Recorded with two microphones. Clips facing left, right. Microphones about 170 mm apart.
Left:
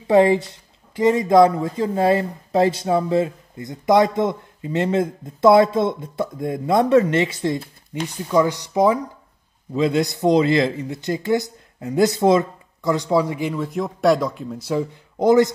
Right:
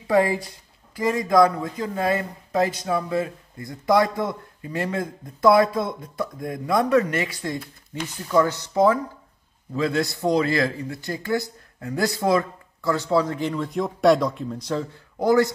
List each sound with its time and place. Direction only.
0.0 s speech: 25° left (ahead or behind); by 14.9 s 10° left (ahead or behind)
15.1 s speech: 20° left (ahead or behind)